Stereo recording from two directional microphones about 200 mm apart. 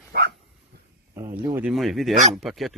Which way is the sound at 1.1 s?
15° right (ahead or behind).